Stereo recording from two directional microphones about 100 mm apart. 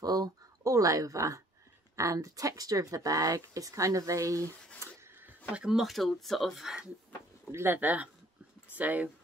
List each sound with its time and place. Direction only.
0.0 s speech: 40° right (ahead or behind)
4.8 s a sound: 30° right (ahead or behind)
5.5 s speech: 5° right (ahead or behind)
7.5 s speech: 20° right (ahead or behind)